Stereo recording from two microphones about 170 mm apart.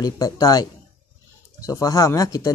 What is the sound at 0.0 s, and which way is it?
Speech, 20° left (ahead or behind).